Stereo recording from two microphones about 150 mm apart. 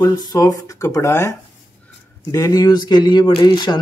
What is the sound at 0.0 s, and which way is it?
Speech, 25° left (ahead or behind).